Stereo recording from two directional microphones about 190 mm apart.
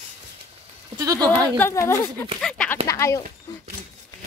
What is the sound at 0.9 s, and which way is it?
Speech, 20° right (ahead or behind).